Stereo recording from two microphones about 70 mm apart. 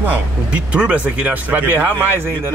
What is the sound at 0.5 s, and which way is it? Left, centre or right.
Speech, centre.